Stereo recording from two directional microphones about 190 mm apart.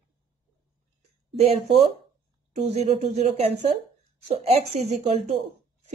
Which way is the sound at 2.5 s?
35° right (ahead or behind).